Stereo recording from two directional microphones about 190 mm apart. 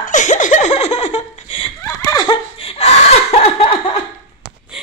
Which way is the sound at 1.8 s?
20° left (ahead or behind).